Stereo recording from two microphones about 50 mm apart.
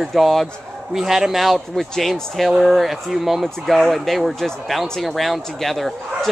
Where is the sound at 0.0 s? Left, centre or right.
Centre.